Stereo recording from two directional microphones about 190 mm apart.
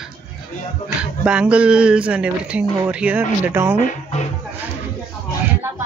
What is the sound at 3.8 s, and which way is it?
Music, 35° left (ahead or behind).